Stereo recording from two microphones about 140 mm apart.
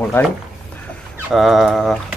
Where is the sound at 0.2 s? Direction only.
15° left (ahead or behind).